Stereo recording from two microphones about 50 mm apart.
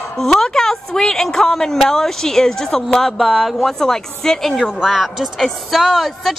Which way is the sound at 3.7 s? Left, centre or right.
Centre.